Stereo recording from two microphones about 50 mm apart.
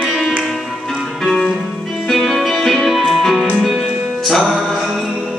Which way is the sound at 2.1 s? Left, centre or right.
Centre.